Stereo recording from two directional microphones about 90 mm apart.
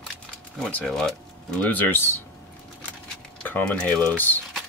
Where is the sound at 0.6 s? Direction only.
15° left (ahead or behind).